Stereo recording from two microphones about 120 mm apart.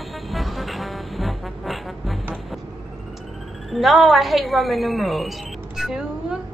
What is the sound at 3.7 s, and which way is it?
A woman's voice, centre (ahead or behind).